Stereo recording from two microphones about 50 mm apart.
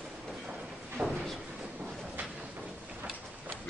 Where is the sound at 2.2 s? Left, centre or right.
Right.